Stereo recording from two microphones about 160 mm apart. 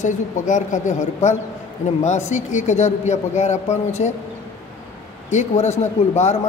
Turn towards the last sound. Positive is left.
turn(degrees=45)  # may be behind; listen again after turning